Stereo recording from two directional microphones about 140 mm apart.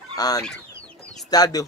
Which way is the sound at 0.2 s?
25° left (ahead or behind).